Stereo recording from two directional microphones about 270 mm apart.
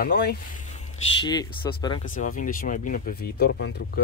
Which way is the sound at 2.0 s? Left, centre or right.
Left.